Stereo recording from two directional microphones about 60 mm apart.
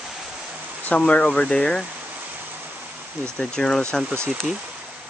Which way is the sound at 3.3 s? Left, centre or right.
Centre.